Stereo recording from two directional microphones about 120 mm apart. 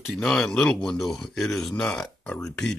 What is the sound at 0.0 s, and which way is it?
Speech, 5° left (ahead or behind).